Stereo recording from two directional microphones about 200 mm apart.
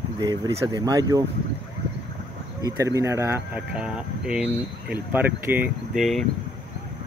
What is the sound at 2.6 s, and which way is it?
Speech, 15° right (ahead or behind).